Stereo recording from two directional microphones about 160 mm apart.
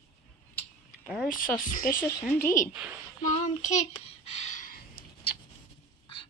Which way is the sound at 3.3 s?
50° left (ahead or behind).